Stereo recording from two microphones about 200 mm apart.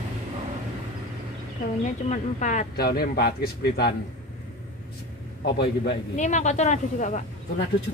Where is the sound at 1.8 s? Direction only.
40° left (ahead or behind).